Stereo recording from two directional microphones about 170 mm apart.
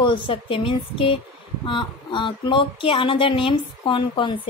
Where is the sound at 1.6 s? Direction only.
30° left (ahead or behind).